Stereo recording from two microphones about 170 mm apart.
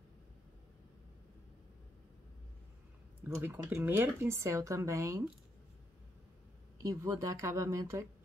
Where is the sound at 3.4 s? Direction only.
10° right (ahead or behind).